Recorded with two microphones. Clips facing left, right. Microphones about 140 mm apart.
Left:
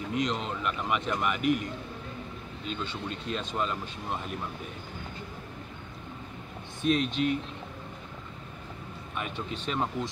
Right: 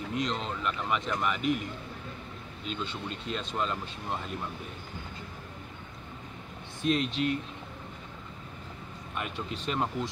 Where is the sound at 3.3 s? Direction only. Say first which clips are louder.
Left 1 dB; centre (ahead or behind).